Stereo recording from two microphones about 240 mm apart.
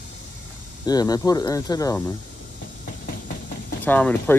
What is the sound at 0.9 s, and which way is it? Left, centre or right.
Speech, centre.